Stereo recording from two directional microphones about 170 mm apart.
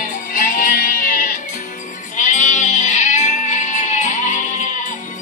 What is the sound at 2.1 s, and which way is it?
Goat, 45° left (ahead or behind).